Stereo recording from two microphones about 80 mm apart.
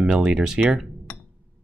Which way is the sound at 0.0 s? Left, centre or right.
Centre.